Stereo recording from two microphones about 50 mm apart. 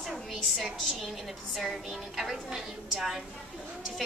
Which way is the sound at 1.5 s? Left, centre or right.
Centre.